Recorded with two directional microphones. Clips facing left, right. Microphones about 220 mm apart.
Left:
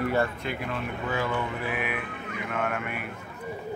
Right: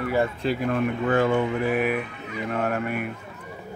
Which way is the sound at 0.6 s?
55° right (ahead or behind).